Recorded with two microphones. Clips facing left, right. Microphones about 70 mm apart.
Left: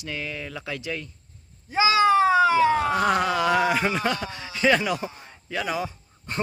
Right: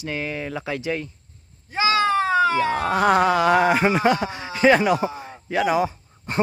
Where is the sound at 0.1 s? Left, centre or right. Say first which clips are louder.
Right 5 dB; right.